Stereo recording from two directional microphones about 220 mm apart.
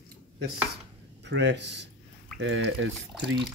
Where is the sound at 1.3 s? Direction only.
50° right (ahead or behind).